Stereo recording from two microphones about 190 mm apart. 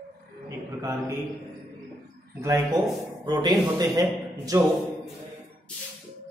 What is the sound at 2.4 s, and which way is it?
A man's voice, 15° right (ahead or behind).